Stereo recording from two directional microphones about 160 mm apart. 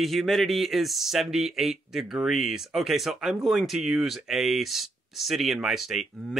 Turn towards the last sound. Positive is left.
turn(degrees=0)  # may be behind; listen again after turning